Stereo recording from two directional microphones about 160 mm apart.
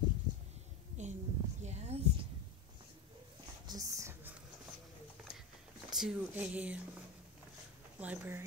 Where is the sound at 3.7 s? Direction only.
20° right (ahead or behind).